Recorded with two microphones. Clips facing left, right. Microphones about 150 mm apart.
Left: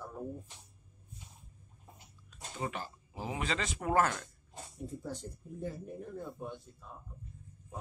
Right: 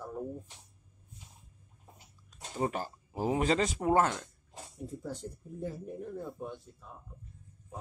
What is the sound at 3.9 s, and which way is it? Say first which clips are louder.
Speech: right 2 dB; 25° right (ahead or behind).